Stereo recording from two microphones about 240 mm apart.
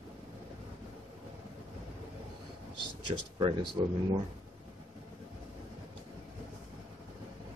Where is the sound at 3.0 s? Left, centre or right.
Right.